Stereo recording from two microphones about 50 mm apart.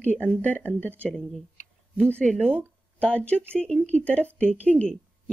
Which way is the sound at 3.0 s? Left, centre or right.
Left.